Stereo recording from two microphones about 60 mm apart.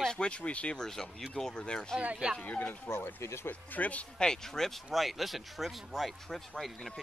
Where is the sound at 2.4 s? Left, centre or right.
Left.